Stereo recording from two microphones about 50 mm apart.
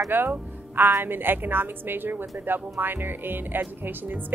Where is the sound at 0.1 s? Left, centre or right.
Right.